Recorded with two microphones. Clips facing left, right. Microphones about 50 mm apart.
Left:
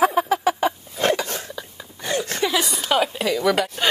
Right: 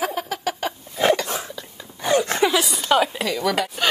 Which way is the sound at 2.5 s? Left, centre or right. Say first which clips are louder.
Right 2 dB; centre.